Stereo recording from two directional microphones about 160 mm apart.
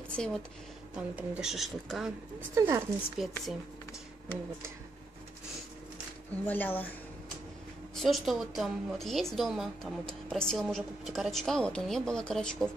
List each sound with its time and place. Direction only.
0.1 s speech: 5° left (ahead or behind)
0.9 s a woman's voice: 5° right (ahead or behind)
2.5 s speech: 15° right (ahead or behind)
3.2 s a woman's voice: centre (ahead or behind)
6.3 s speech: 10° left (ahead or behind)
7.9 s a woman's voice: centre (ahead or behind)